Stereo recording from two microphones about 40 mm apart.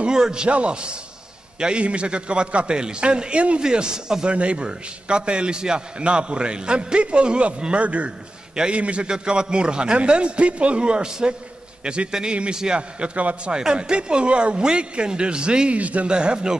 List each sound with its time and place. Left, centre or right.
0.0 s a man's voice: centre
4.3 s a man's voice: right
15.8 s a man's voice: right
16.1 s a man's voice: right